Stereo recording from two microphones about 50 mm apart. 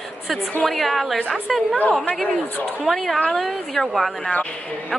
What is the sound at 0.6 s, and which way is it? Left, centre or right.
A woman's voice, centre.